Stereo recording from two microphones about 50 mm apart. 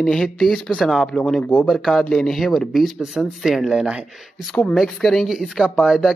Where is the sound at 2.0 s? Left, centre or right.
Centre.